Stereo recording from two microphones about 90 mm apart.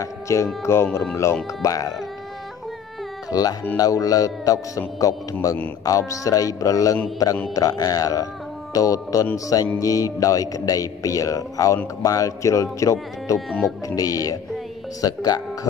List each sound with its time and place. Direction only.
0.0 s a man's voice: 35° left (ahead or behind)
3.3 s a man's voice: 45° left (ahead or behind)